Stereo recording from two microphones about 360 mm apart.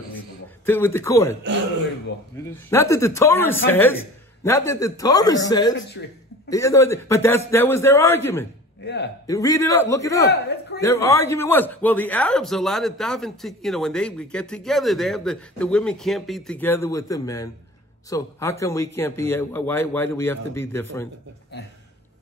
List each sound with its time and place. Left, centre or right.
0.7 s a man's voice: centre
2.3 s a man's voice: centre
6.0 s a man's voice: left
6.5 s a man's voice: centre
8.8 s a man's voice: left
9.3 s a man's voice: centre
10.2 s a man's voice: left
10.8 s a man's voice: centre